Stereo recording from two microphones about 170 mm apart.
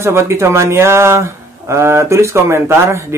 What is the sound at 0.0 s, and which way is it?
Speech, 15° right (ahead or behind).